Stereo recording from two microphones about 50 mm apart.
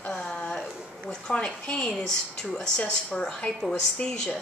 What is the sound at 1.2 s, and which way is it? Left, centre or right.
A woman's voice, centre.